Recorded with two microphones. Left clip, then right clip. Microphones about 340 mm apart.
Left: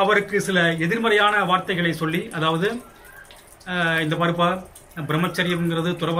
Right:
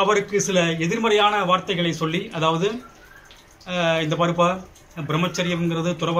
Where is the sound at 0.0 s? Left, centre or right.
Centre.